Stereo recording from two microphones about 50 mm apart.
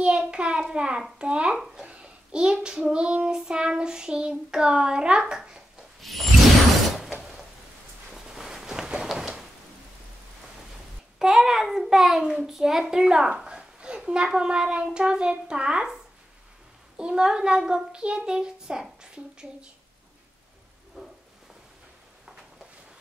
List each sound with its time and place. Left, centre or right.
0.0 s a child's voice: centre
1.9 s child singing: centre
5.9 s music: centre
8.1 s a sound: centre
8.9 s rain: centre
11.1 s child singing: centre
21.0 s rain: centre